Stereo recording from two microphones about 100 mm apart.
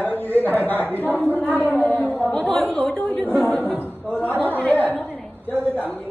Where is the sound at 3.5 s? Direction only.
15° left (ahead or behind).